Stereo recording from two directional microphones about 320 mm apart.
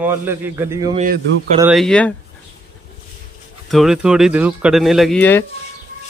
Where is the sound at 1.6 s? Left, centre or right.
Centre.